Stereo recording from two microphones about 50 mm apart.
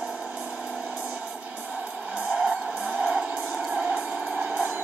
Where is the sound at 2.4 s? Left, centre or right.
Centre.